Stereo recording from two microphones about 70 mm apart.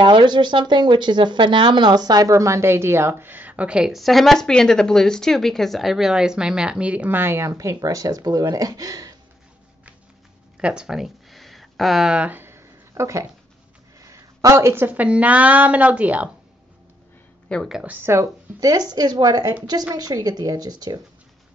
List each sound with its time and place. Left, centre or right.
0.2 s speech: right; by 3.9 s centre
3.9 s speech: centre
7.1 s a woman's voice: right
7.7 s speech: right
10.6 s a sound: centre
12.3 s a sound: right
14.9 s a woman's voice: right
17.5 s a woman's voice: centre
17.8 s a woman's voice: right
18.1 s speech: right